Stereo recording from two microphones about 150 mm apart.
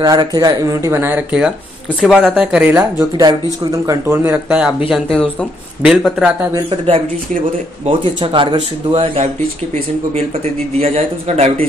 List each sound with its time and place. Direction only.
0.0 s speech: 25° right (ahead or behind); by 2.8 s 5° right (ahead or behind)
3.2 s speech: 25° right (ahead or behind); by 6.3 s 5° right (ahead or behind)
8.2 s speech: 35° right (ahead or behind)
10.8 s speech: 45° right (ahead or behind)